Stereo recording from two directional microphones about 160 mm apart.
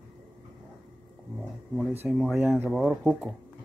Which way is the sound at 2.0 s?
5° right (ahead or behind).